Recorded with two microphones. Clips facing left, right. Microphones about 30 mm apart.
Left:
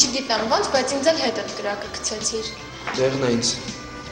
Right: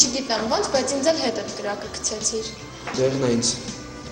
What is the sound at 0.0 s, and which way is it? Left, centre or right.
A woman's voice, left.